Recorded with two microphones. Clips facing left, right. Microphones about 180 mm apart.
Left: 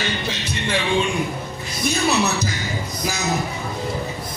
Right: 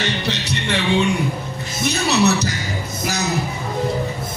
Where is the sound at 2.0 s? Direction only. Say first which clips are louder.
Right 5 dB; 70° right (ahead or behind).